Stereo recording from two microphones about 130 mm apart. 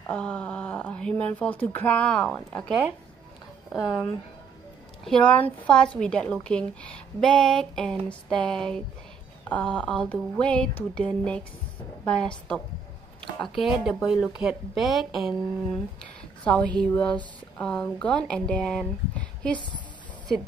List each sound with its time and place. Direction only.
0.1 s speech: 10° left (ahead or behind)
5.0 s a woman's voice: 5° left (ahead or behind)